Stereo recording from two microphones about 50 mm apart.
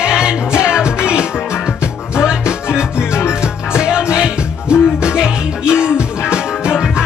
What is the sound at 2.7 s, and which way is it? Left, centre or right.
Music, left.